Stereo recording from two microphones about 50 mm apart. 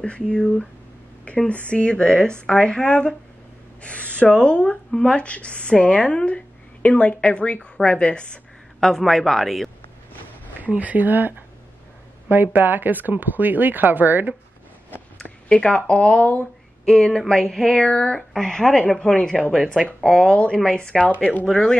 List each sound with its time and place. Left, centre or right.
0.0 s speech: left
1.7 s speech: left
8.7 s speech: centre
10.6 s speech: right
15.2 s speech: left
16.8 s a sound: centre
19.7 s speech: centre
20.3 s speech: centre